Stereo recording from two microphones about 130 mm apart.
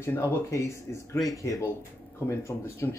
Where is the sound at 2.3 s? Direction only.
20° left (ahead or behind).